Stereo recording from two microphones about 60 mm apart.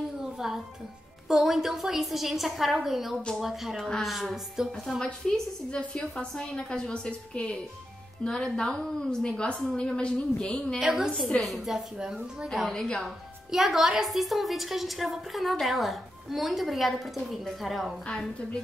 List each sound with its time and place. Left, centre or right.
0.2 s music: centre
1.3 s a woman's voice: centre
10.8 s a woman's voice: centre
12.7 s a woman's voice: centre
13.5 s a woman's voice: centre
18.0 s a woman's voice: centre